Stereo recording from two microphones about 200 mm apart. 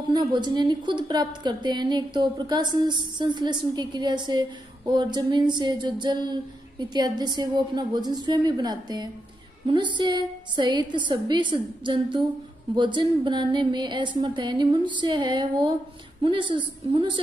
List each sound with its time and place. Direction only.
0.1 s a woman's voice: 20° right (ahead or behind)